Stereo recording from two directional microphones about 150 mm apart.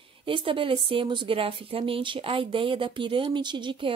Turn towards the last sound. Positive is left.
turn(degrees=-35)  # may be behind; listen again after turning